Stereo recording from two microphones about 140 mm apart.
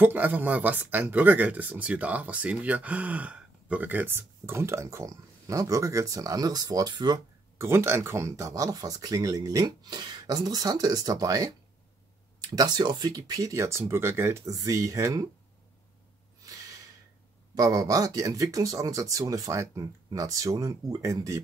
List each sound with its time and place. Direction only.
0.0 s speech: 15° right (ahead or behind)
7.5 s speech: 15° right (ahead or behind)
12.5 s speech: 30° right (ahead or behind)
17.6 s speech: 25° right (ahead or behind)